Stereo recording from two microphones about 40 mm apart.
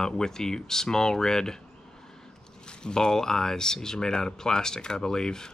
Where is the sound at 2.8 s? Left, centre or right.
Centre.